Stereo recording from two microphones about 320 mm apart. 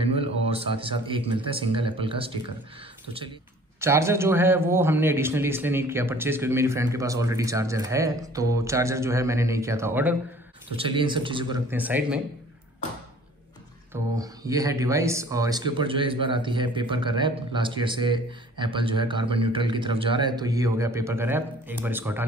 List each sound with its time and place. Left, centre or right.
0.5 s speech: centre
3.8 s speech: centre
14.1 s speech: centre